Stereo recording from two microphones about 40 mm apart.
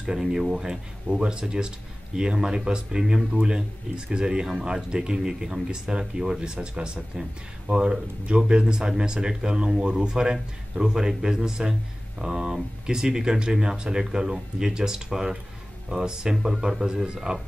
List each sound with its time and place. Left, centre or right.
0.0 s speech: centre
1.1 s speech: right